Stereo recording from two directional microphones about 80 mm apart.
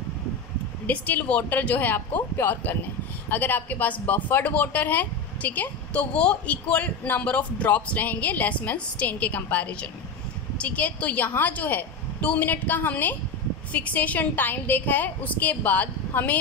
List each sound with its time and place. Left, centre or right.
0.8 s speech: centre